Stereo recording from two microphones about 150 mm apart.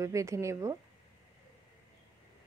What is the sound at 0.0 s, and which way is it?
Speech, 20° right (ahead or behind).